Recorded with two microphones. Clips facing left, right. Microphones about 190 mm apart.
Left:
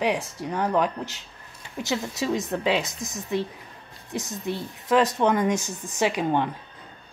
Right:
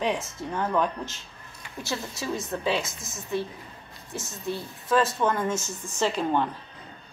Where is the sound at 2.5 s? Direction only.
15° left (ahead or behind).